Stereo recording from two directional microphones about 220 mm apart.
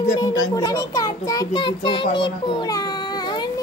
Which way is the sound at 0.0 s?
15° left (ahead or behind).